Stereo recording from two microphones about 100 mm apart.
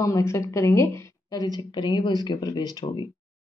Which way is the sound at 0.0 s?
30° left (ahead or behind).